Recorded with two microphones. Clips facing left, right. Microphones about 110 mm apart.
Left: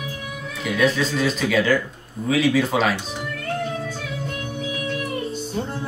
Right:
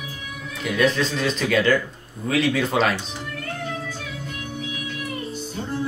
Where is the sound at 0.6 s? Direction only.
Centre (ahead or behind).